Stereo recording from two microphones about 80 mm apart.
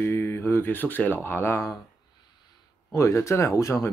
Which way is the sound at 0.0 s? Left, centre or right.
Left.